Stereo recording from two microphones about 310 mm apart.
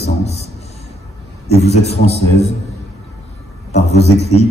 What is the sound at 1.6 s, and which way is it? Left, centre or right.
Speech, left.